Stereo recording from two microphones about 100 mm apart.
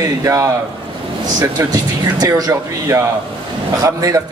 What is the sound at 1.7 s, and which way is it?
A man's voice, 40° right (ahead or behind).